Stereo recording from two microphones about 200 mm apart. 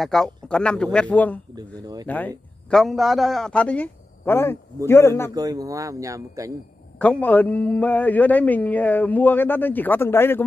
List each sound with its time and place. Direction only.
0.0 s a man's voice: 5° left (ahead or behind)
1.5 s speech: 20° right (ahead or behind)
2.0 s speech: 10° left (ahead or behind)
5.3 s speech: 20° right (ahead or behind)
7.0 s speech: 5° left (ahead or behind)